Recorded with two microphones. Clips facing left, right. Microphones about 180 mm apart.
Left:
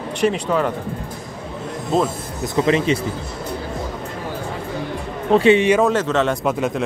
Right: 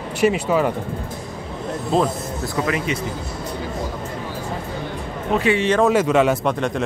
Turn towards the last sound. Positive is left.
turn(degrees=5)  # may be behind; listen again after turning